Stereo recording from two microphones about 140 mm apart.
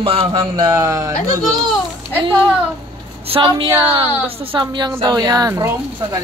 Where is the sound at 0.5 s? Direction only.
25° right (ahead or behind).